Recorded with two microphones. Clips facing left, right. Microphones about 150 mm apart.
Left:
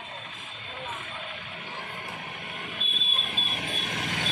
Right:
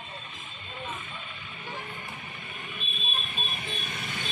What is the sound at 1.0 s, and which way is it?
Music, 70° left (ahead or behind).